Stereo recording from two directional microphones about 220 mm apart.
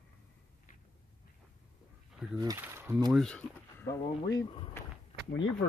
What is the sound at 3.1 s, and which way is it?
Speech, 5° left (ahead or behind).